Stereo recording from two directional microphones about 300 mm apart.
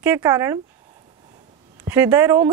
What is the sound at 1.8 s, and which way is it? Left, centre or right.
Speech, centre.